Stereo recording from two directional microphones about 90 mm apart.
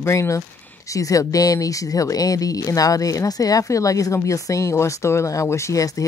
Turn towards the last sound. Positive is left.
turn(degrees=40)  # may be behind; listen again after turning